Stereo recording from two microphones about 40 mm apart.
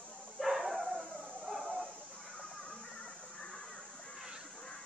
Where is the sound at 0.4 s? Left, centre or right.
Centre.